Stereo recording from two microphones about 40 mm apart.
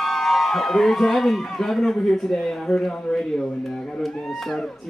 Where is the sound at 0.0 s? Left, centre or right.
Centre.